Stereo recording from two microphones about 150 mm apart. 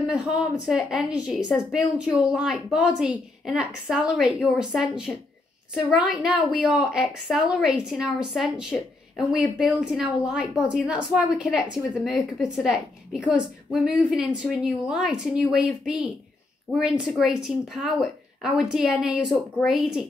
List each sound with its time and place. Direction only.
0.1 s a woman's voice: 5° right (ahead or behind)